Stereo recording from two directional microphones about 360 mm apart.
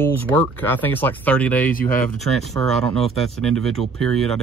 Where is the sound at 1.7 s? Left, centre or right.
Left.